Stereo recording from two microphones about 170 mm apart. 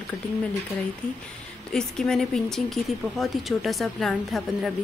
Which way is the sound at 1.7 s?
5° left (ahead or behind).